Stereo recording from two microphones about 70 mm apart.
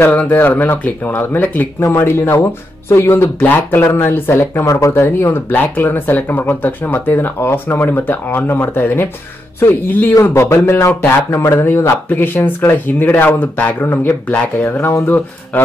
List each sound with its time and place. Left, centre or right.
0.1 s speech: left
1.8 s speech: left
4.6 s speech: left
5.0 s speech: left
10.2 s speech: left
14.6 s speech: left